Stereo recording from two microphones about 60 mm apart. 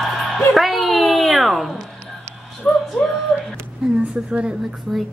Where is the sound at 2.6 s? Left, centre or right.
Centre.